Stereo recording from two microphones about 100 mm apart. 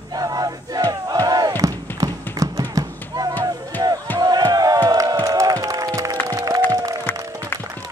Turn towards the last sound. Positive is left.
turn(degrees=-35)  # may be behind; listen again after turning